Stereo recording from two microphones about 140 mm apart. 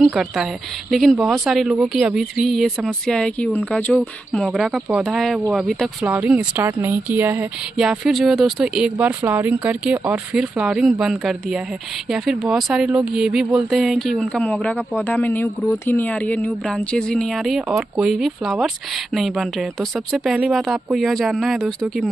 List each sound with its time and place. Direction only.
0.0 s speech: 5° right (ahead or behind)
6.0 s speech: 10° right (ahead or behind)
7.7 s a man's voice: 5° right (ahead or behind)